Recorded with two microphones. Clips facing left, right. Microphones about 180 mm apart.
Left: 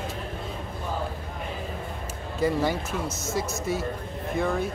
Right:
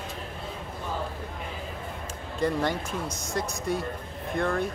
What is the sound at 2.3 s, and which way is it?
Speech, 5° left (ahead or behind).